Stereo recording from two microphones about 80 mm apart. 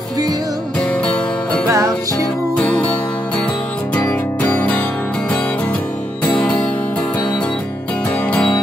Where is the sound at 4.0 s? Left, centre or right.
Centre.